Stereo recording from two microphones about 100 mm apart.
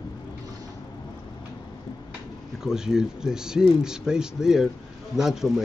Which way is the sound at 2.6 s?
5° right (ahead or behind).